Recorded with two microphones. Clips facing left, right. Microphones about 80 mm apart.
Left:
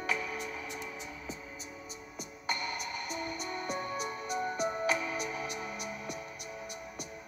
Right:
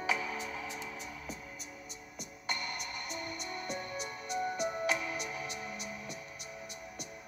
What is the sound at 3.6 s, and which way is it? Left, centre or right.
Music, left.